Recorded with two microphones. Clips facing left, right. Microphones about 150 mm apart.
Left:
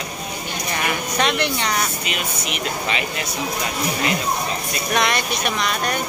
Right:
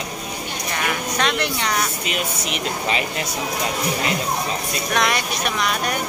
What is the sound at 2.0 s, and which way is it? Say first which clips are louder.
Speech: right 1 dB; 35° right (ahead or behind).